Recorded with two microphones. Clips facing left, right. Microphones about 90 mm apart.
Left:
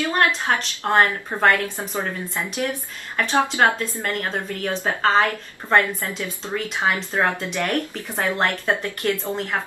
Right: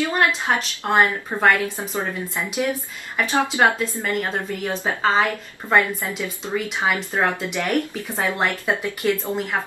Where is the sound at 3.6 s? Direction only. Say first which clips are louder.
Right 1 dB; 10° right (ahead or behind).